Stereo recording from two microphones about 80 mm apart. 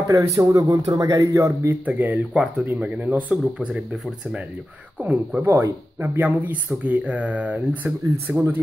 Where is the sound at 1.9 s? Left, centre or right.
Right.